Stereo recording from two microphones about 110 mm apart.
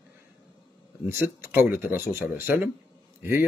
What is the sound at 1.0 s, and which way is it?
Speech, 20° right (ahead or behind).